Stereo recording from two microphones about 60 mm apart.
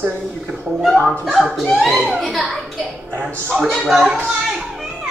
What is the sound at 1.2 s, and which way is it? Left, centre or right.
A child's voice, centre.